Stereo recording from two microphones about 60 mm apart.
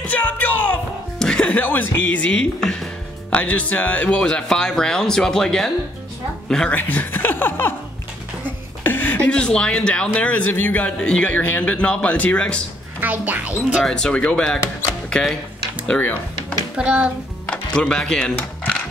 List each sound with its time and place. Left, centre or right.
0.0 s music: left
1.2 s music: centre
1.5 s speech: left; by 2.9 s centre
3.3 s speech: left
4.2 s speech: centre
6.7 s speech: left
8.8 s a sound: left
9.3 s speech: centre; by 10.9 s left
11.0 s speech: centre
13.0 s speech: right
13.8 s speech: centre
15.9 s speech: left
16.7 s a child's voice: centre
17.5 s speech: centre